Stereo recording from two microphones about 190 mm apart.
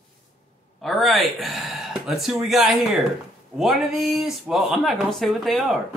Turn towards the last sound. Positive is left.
turn(degrees=0)  # may be behind; listen again after turning